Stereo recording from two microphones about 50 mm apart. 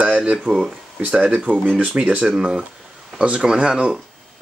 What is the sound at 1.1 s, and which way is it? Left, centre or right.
Speech, right.